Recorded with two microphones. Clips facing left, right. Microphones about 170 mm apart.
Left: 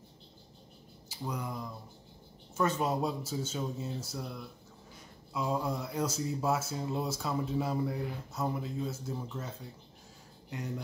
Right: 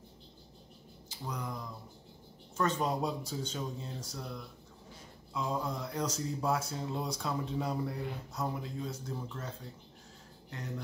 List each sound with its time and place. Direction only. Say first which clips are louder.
1.0 s speech: left 2 dB; 10° left (ahead or behind)